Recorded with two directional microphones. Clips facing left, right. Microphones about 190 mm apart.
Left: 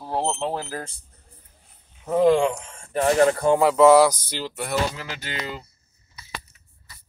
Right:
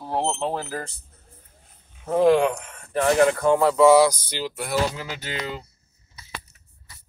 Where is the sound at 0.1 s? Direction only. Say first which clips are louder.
Even; 10° right (ahead or behind).